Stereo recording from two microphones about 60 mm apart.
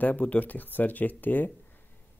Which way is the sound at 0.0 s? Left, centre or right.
Left.